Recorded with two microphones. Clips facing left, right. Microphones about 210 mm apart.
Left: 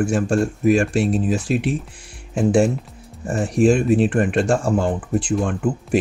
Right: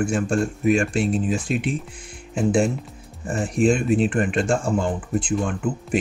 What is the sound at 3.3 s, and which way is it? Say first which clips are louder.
Speech: left 3 dB; 40° left (ahead or behind).